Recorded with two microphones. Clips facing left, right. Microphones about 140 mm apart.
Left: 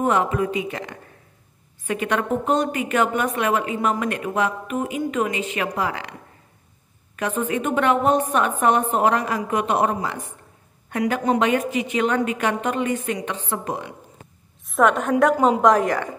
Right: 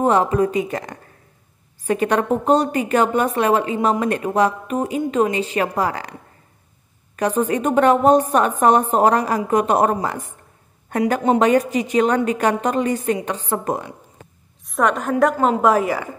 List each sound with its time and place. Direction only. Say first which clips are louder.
0.0 s a woman's voice: right 4 dB; 35° right (ahead or behind)
7.2 s a woman's voice: right 5 dB; 35° right (ahead or behind)
14.6 s a woman's voice: left 1 dB; centre (ahead or behind)
15.3 s a woman's voice: even; 15° left (ahead or behind)
15.6 s a woman's voice: even; 5° right (ahead or behind)